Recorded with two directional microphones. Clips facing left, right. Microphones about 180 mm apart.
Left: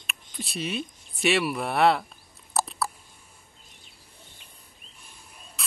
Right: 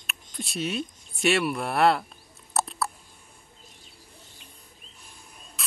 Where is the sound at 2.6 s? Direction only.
Centre (ahead or behind).